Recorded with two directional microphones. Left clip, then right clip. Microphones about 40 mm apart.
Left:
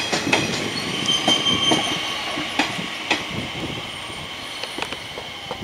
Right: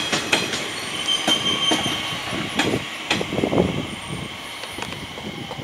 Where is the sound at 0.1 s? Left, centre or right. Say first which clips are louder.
Left 1 dB; right.